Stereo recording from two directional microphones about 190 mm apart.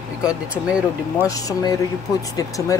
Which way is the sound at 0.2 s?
5° right (ahead or behind).